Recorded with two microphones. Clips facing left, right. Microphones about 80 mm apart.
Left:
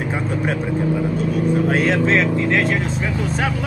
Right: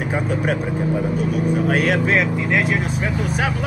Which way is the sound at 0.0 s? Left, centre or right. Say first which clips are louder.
Right 1 dB; centre.